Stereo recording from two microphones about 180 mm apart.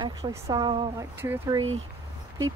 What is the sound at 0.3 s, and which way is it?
Speech, 20° right (ahead or behind).